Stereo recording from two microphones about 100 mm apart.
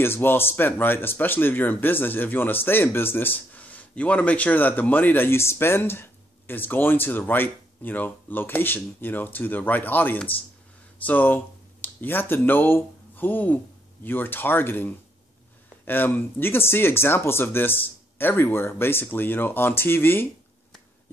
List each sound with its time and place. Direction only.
0.0 s speech: 20° left (ahead or behind)